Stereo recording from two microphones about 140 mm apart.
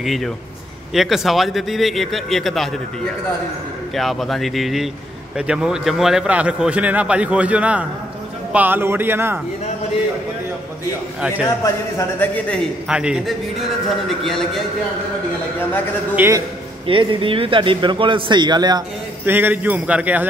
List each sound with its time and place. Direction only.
0.0 s a man's voice: centre (ahead or behind)
3.9 s a man's voice: centre (ahead or behind); by 9.4 s 15° right (ahead or behind)
11.1 s a man's voice: 10° right (ahead or behind)
11.6 s a man's voice: 20° left (ahead or behind)
12.8 s a man's voice: 5° right (ahead or behind)
16.2 s a man's voice: 20° right (ahead or behind)
16.8 s speech: 35° right (ahead or behind)
19.2 s a man's voice: 15° right (ahead or behind)